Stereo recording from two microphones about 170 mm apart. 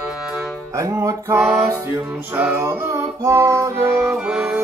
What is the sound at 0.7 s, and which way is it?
Music, 20° right (ahead or behind).